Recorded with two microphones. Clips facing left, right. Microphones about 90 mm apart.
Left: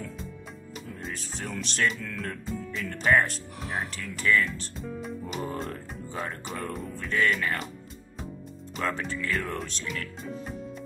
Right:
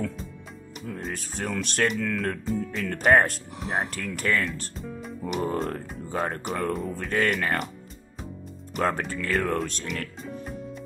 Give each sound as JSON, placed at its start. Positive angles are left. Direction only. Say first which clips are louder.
{"t": 0.9, "sound": "speech", "louder": "right 5 dB", "side_deg": -50}
{"t": 2.0, "sound": "speech", "louder": "right 9 dB", "side_deg": -80}
{"t": 2.4, "sound": "speech", "louder": "right 6 dB", "side_deg": 0}
{"t": 2.7, "sound": "speech", "louder": "right 3 dB", "side_deg": -55}
{"t": 3.5, "sound": "speech", "louder": "right 4 dB", "side_deg": -20}
{"t": 3.9, "sound": "speech", "louder": "left 1 dB", "side_deg": -55}
{"t": 8.7, "sound": "speech", "louder": "right 4 dB", "side_deg": -50}